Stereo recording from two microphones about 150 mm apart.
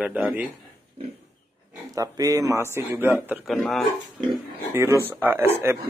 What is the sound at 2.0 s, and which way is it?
Speech, 25° right (ahead or behind).